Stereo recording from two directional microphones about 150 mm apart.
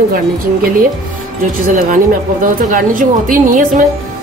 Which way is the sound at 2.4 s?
65° right (ahead or behind).